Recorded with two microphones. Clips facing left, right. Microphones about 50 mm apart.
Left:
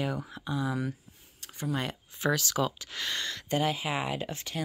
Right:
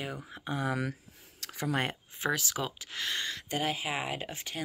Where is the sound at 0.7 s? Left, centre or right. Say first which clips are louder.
Even; right.